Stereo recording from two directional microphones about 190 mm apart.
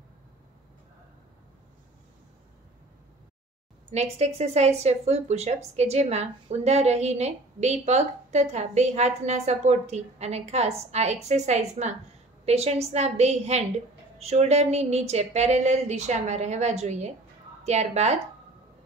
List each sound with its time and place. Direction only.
3.9 s speech: 35° right (ahead or behind)